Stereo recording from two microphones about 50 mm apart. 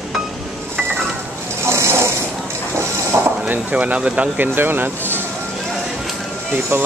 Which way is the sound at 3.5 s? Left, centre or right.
Right.